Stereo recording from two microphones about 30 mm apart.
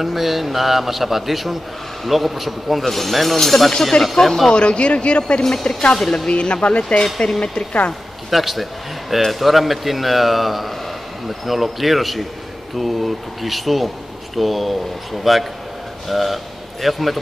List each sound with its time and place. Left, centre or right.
0.0 s a man's voice: centre
2.8 s a man's voice: centre
4.5 s speech: left
5.4 s speech: centre
6.2 s speech: left
7.2 s speech: centre
8.3 s a man's voice: centre